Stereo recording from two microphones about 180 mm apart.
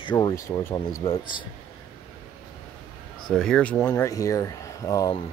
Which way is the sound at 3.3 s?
5° left (ahead or behind).